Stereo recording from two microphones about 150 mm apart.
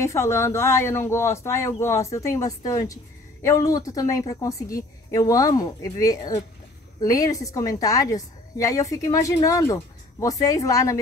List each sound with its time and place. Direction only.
0.0 s a woman's voice: 20° left (ahead or behind)